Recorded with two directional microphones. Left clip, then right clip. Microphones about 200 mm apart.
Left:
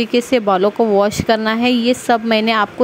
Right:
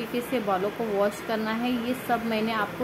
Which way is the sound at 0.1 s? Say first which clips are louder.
Left 11 dB; 45° left (ahead or behind).